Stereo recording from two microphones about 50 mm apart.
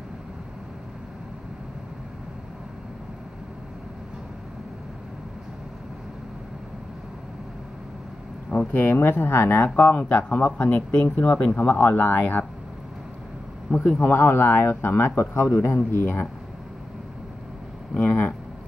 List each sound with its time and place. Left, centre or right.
8.7 s speech: left
9.8 s speech: left
13.7 s speech: centre
14.0 s speech: left
15.0 s speech: left
15.9 s speech: left
17.9 s speech: left